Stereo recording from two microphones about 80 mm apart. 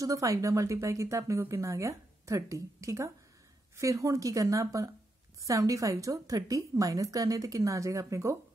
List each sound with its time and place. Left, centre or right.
0.0 s a woman's voice: right